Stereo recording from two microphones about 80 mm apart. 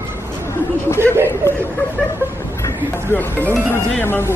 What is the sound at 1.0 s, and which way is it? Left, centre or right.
Speech, centre.